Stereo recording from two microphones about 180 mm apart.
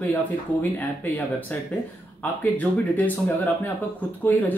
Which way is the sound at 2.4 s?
10° left (ahead or behind).